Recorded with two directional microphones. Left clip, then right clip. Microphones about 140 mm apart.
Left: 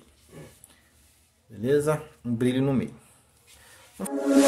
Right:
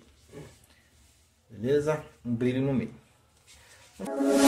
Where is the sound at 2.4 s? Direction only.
35° left (ahead or behind).